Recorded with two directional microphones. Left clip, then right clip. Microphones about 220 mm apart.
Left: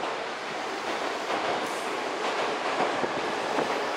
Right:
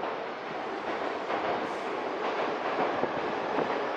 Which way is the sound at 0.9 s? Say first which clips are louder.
Left 2 dB; 5° right (ahead or behind).